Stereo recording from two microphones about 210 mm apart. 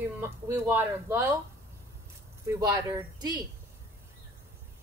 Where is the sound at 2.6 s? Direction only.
15° right (ahead or behind).